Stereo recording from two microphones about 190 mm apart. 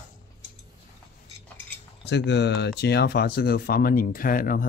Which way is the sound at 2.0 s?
65° left (ahead or behind).